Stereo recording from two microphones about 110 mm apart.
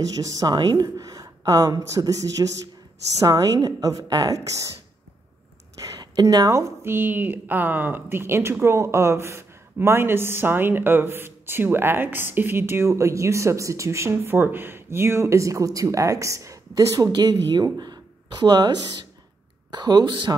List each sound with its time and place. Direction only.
0.1 s speech: 30° right (ahead or behind)
5.8 s a woman's voice: 35° right (ahead or behind)